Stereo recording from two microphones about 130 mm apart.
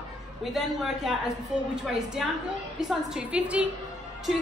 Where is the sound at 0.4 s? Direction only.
Centre (ahead or behind).